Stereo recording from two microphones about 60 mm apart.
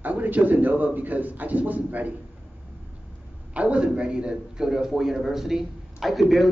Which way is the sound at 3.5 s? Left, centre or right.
Right.